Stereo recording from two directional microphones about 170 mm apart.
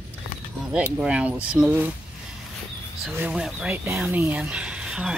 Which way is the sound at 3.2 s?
5° right (ahead or behind).